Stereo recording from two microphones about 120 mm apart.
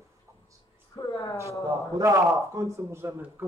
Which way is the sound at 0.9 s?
30° left (ahead or behind).